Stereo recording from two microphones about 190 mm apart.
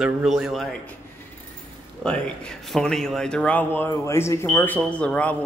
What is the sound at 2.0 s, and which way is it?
Speech, 5° left (ahead or behind).